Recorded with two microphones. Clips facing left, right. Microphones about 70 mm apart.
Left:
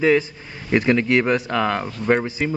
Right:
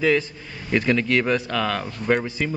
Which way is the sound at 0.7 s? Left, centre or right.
Left.